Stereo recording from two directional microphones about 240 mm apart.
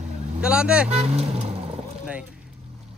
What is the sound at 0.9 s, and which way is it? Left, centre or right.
Speech, right.